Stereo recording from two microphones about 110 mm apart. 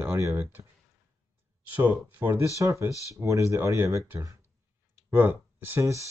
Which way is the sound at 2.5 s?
30° right (ahead or behind).